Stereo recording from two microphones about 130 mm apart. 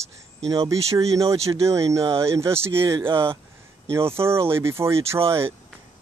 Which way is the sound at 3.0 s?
40° right (ahead or behind).